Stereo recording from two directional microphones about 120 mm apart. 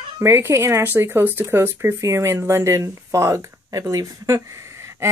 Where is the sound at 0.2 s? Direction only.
25° right (ahead or behind).